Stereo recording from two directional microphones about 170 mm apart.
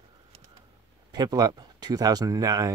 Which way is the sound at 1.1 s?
25° right (ahead or behind).